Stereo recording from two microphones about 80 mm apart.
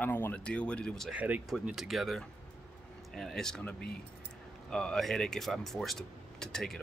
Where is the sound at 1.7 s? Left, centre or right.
Centre.